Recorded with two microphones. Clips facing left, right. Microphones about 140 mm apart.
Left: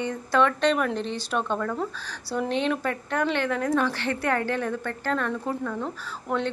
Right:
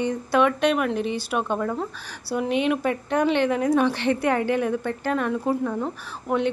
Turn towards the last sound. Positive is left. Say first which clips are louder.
# right 4 dB
turn(degrees=-10)  # may be behind; listen again after turning